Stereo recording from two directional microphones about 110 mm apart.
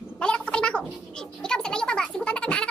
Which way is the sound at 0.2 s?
10° left (ahead or behind).